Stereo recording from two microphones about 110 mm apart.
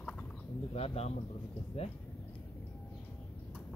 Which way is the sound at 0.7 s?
70° left (ahead or behind).